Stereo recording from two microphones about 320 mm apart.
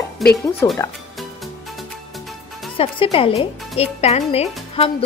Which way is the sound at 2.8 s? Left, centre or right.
Centre.